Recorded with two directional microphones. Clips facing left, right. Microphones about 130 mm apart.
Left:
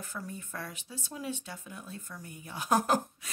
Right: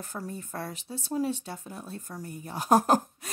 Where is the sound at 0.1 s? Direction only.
35° right (ahead or behind).